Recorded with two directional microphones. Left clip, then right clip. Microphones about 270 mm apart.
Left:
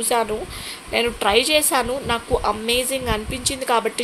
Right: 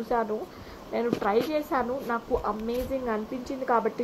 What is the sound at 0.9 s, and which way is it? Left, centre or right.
A woman's voice, left.